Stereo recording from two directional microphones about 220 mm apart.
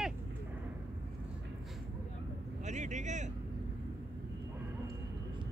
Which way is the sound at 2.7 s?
30° right (ahead or behind).